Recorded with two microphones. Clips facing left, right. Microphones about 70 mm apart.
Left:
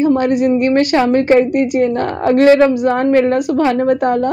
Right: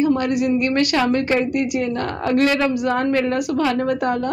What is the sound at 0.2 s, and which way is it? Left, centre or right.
Speech, left.